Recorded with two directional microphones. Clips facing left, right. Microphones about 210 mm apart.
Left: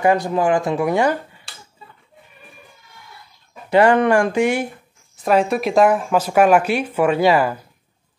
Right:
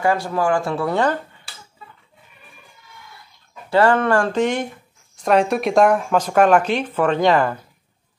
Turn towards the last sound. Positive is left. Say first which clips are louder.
# left 1 dB
turn(degrees=10)  # may be behind; listen again after turning